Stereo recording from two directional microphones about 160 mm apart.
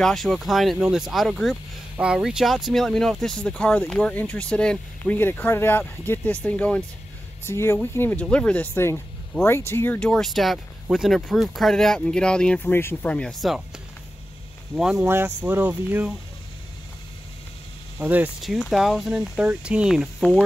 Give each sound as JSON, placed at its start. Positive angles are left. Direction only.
{"t": 0.0, "sound": "speech", "side_deg": 0}
{"t": 9.9, "sound": "speech", "side_deg": 5}
{"t": 14.8, "sound": "speech", "side_deg": -5}
{"t": 17.9, "sound": "speech", "side_deg": -10}